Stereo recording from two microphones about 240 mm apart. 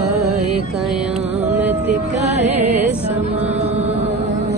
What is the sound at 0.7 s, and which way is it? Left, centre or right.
Music, centre.